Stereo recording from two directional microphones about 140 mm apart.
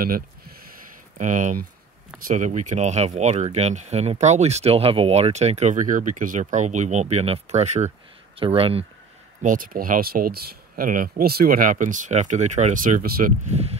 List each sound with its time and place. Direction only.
1.1 s speech: 65° right (ahead or behind)
8.4 s speech: 40° right (ahead or behind)
9.4 s speech: 75° right (ahead or behind)
13.5 s speech: 50° right (ahead or behind)